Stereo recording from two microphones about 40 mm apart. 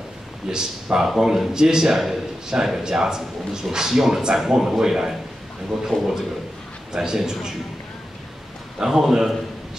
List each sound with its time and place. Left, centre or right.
0.5 s a man's voice: centre
8.7 s a man's voice: centre